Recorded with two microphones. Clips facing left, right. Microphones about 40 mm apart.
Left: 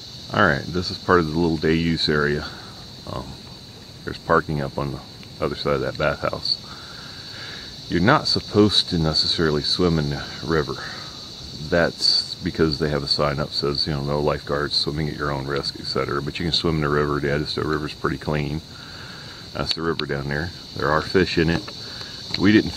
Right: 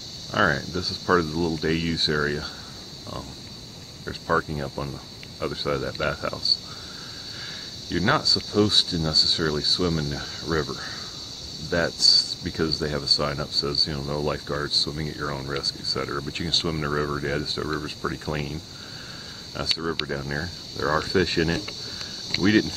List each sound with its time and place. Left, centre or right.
0.3 s speech: centre
19.8 s speech: centre